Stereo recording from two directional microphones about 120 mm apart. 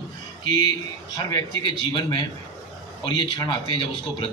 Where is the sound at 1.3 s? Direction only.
40° left (ahead or behind).